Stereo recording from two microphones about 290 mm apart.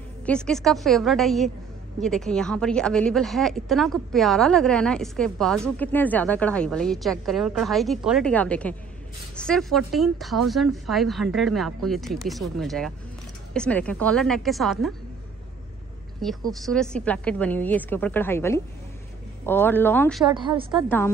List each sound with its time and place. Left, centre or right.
0.2 s a woman's voice: centre
16.2 s a woman's voice: centre
20.3 s a woman's voice: centre
20.7 s speech: centre